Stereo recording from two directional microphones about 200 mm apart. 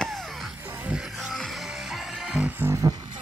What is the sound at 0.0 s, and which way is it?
Music, centre (ahead or behind).